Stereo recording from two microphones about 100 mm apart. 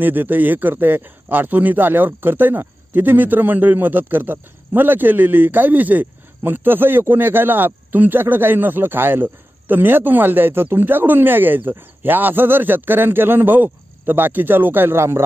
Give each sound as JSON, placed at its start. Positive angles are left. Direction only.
{"t": 0.0, "sound": "speech", "side_deg": -20}